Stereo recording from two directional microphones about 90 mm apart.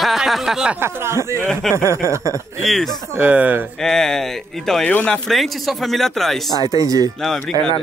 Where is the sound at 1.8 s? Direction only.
30° right (ahead or behind).